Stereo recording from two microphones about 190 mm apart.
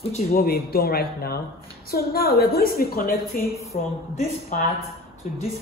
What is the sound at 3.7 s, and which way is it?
A woman's voice, 30° left (ahead or behind).